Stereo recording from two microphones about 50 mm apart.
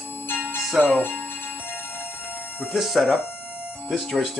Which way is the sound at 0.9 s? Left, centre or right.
Left.